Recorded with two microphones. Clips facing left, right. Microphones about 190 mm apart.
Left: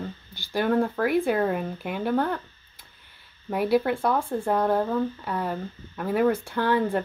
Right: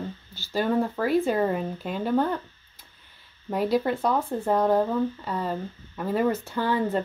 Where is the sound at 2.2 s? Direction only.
10° right (ahead or behind).